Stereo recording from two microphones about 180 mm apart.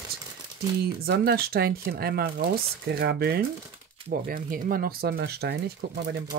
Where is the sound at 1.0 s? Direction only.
60° right (ahead or behind).